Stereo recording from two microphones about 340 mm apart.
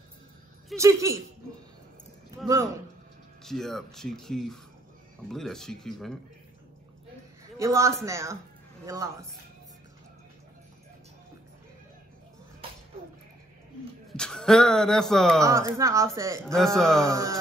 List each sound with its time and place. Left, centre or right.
0.7 s a man's voice: centre
2.4 s a man's voice: centre
3.4 s speech: centre
7.5 s a man's voice: centre
14.1 s speech: centre
15.8 s a man's voice: centre
17.0 s a man's voice: centre